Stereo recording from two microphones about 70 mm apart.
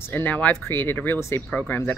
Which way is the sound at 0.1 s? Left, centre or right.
Left.